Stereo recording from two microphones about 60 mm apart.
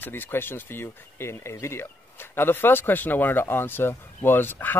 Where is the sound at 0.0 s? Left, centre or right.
Left.